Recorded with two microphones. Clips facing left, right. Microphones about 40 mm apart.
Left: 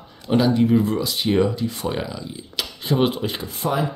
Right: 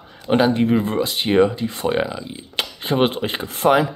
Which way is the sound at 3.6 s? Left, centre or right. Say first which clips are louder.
Right 7 dB; right.